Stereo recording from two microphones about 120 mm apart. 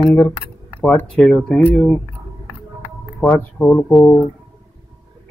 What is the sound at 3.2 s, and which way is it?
Speech, 10° left (ahead or behind).